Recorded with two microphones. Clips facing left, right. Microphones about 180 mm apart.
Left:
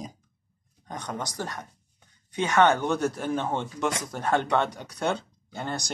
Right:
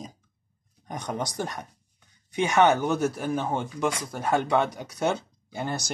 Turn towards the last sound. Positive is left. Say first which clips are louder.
# right 2 dB
turn(degrees=-10)  # may be behind; listen again after turning